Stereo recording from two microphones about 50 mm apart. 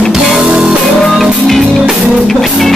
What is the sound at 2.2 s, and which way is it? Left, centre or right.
Music, centre.